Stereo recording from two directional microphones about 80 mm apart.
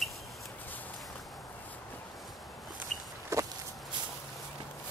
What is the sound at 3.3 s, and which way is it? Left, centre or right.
Walk, right.